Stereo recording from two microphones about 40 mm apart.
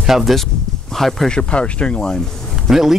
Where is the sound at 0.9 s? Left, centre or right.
Centre.